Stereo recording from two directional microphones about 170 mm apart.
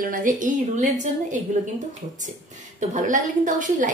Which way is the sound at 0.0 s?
50° right (ahead or behind).